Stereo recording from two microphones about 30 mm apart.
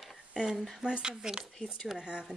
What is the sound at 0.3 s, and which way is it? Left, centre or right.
Speech, right.